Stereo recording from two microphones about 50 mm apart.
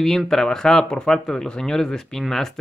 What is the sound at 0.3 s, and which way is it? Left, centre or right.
Speech, centre.